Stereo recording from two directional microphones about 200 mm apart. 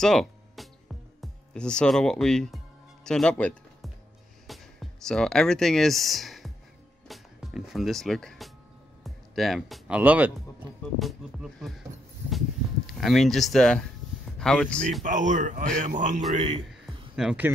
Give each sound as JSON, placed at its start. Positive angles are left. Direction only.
{"t": 0.0, "sound": "music", "side_deg": 0}
{"t": 5.0, "sound": "speech", "side_deg": 5}
{"t": 10.6, "sound": "speech", "side_deg": -20}
{"t": 11.0, "sound": "speech", "side_deg": 0}
{"t": 12.9, "sound": "speech", "side_deg": 0}
{"t": 15.0, "sound": "speech", "side_deg": -40}
{"t": 17.1, "sound": "speech", "side_deg": -5}